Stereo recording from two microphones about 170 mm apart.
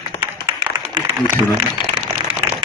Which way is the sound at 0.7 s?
30° right (ahead or behind).